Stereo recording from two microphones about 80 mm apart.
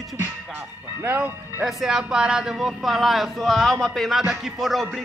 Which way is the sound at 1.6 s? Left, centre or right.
Centre.